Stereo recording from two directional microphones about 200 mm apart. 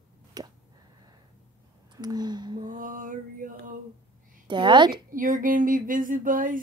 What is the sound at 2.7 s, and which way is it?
Mantra, 40° right (ahead or behind).